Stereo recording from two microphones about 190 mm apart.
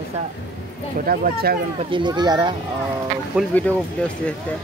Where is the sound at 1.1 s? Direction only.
50° right (ahead or behind).